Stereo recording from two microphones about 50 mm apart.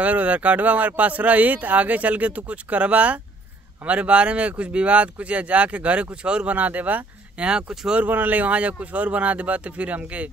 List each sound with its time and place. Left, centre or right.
0.0 s speech: right
7.3 s speech: centre
8.1 s speech: right